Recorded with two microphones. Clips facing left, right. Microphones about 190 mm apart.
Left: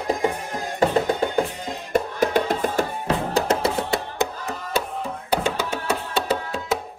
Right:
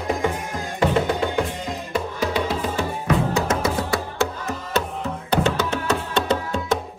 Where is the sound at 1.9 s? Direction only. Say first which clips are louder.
Left 5 dB; 50° left (ahead or behind).